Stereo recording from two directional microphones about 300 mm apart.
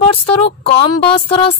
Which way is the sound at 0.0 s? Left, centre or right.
Centre.